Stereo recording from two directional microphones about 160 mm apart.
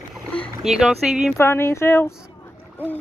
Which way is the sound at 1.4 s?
15° left (ahead or behind).